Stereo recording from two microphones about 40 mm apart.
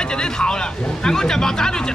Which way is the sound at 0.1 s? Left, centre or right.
Centre.